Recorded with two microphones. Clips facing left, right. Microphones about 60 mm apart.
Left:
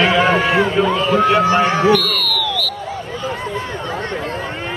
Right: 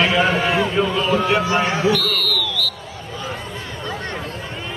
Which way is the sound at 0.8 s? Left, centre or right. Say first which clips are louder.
Left 4 dB; left.